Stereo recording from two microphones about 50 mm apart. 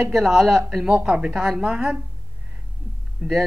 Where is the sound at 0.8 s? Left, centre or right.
Right.